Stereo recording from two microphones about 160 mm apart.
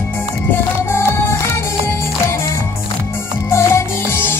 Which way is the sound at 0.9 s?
15° left (ahead or behind).